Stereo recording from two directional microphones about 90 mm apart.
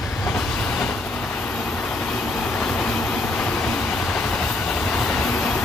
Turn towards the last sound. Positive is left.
turn(degrees=10)  # may be behind; listen again after turning